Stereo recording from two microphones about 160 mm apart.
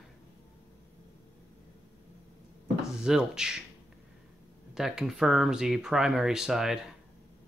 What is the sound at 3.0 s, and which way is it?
Speech, 5° right (ahead or behind).